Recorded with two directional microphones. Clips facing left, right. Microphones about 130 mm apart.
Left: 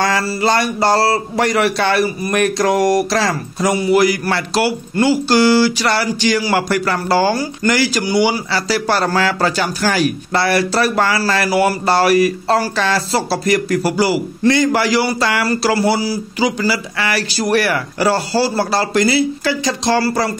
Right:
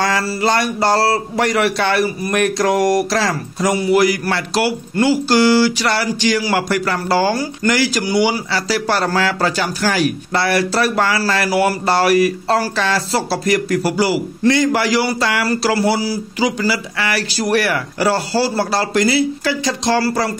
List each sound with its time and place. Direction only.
0.0 s speech: 30° left (ahead or behind)